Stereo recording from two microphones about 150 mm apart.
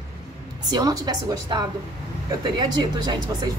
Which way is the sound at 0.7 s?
25° right (ahead or behind).